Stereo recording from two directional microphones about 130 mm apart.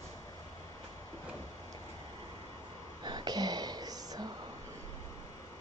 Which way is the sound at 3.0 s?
35° right (ahead or behind).